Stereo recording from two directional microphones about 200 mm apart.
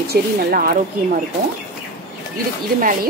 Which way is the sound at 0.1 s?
45° right (ahead or behind).